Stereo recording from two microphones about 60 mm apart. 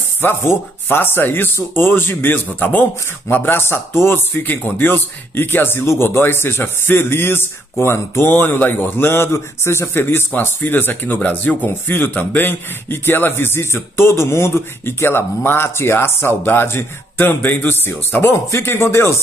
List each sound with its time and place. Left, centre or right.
0.2 s a man's voice: left